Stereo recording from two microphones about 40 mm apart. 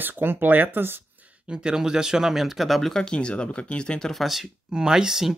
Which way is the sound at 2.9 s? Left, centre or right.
Left.